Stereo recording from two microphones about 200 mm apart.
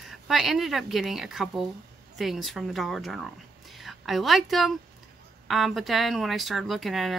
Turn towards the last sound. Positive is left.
turn(degrees=0)  # may be behind; listen again after turning